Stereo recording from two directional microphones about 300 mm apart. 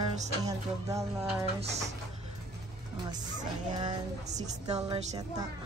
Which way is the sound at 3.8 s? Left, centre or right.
Centre.